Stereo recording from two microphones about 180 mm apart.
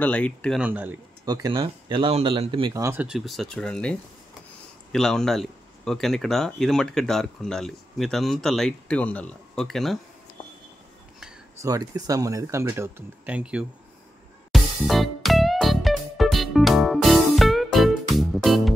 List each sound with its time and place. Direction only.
0.0 s speech: 5° left (ahead or behind)
0.6 s speech: 10° right (ahead or behind)
1.2 s speech: 20° right (ahead or behind)
2.7 s speech: 15° right (ahead or behind); by 9.9 s centre (ahead or behind)
11.6 s speech: 20° right (ahead or behind)
14.5 s music: centre (ahead or behind)